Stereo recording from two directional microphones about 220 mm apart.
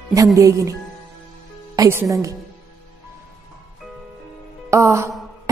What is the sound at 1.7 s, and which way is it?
Speech, 15° right (ahead or behind).